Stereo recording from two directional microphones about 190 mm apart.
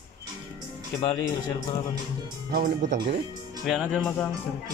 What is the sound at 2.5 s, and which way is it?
Speech, 45° right (ahead or behind).